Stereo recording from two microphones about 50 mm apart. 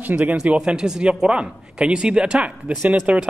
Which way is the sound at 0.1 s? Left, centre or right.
Right.